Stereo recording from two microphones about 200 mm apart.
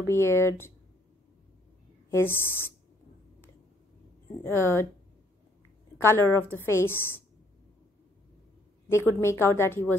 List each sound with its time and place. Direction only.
0.0 s a woman's voice: 15° left (ahead or behind)
2.0 s a woman's voice: 10° left (ahead or behind)
4.4 s a woman's voice: 10° left (ahead or behind)
5.9 s a woman's voice: 10° left (ahead or behind)
8.9 s a woman's voice: 15° left (ahead or behind)